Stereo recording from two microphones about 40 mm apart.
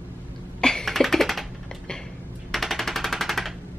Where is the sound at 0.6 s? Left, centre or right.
Centre.